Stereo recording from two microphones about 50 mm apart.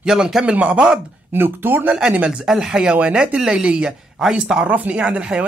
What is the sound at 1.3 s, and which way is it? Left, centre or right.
Speech, right.